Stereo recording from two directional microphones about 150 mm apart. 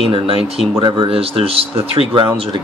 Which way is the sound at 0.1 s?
40° right (ahead or behind).